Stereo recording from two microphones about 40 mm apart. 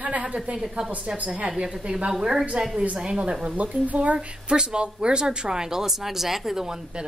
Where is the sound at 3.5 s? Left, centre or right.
Right.